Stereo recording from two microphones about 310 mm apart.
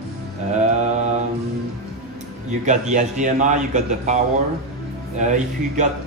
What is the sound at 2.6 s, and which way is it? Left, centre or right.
A man's voice, right.